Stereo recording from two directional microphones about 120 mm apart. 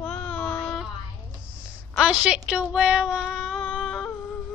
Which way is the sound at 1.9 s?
5° right (ahead or behind).